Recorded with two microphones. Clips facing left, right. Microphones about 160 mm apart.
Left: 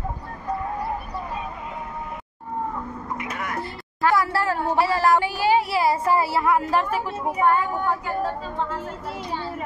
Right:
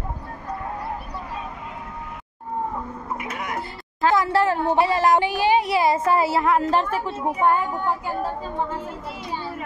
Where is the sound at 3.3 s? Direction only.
20° right (ahead or behind).